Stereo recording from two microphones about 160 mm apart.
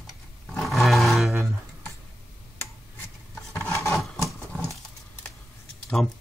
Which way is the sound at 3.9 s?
Centre (ahead or behind).